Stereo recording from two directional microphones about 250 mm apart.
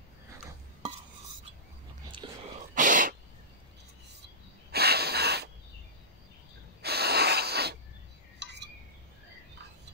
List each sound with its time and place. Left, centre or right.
2.2 s whispering: centre
2.7 s sneeze: right
4.6 s snort: right
6.8 s a sound: right
8.4 s wind chime: right